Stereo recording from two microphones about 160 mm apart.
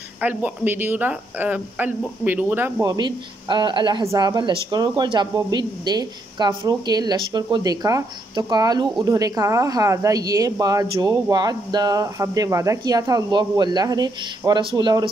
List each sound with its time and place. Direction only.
0.2 s speech: 10° right (ahead or behind); by 15.0 s 30° right (ahead or behind)